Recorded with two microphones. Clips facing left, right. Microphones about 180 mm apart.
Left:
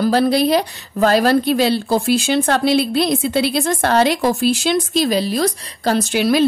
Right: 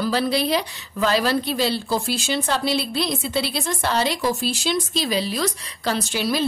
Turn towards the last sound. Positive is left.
turn(degrees=60)  # may be behind; listen again after turning